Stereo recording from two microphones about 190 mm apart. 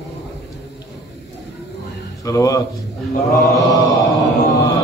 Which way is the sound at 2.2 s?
15° left (ahead or behind).